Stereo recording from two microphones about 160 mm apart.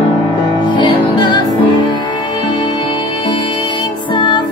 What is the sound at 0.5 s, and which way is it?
Music, 30° left (ahead or behind).